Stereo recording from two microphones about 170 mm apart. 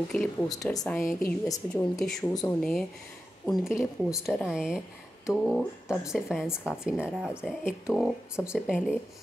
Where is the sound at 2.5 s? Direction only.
5° left (ahead or behind).